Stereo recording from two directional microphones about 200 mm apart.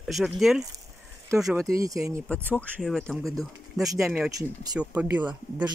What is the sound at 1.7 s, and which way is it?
Speech, 15° right (ahead or behind).